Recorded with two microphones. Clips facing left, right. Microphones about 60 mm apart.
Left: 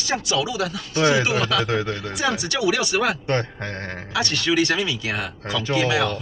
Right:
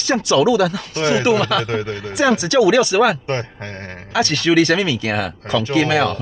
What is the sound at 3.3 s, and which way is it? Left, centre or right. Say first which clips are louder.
Speech: even; centre.